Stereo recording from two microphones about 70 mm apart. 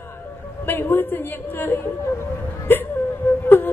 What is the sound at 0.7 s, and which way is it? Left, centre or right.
A woman's voice, left.